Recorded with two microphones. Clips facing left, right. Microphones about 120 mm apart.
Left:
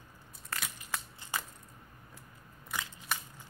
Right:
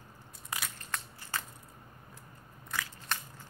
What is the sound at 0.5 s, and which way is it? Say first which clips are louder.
Crushing: right 1 dB; 15° right (ahead or behind).